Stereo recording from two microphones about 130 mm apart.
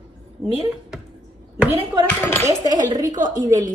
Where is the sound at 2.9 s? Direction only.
30° right (ahead or behind).